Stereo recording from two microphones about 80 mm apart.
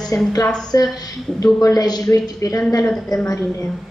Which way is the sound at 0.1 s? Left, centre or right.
Left.